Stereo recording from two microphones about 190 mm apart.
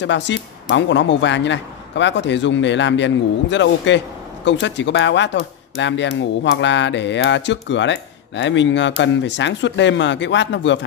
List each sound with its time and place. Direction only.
0.0 s speech: 70° left (ahead or behind)